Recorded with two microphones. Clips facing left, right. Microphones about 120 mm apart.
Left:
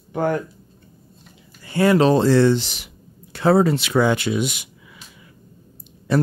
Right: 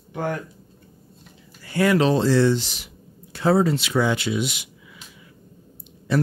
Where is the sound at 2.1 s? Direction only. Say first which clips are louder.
Left 3 dB; 55° left (ahead or behind).